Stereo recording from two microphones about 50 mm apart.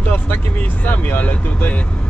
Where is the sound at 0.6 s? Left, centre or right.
Left.